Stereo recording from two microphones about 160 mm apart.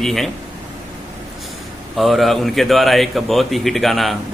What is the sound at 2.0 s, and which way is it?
Speech, centre (ahead or behind).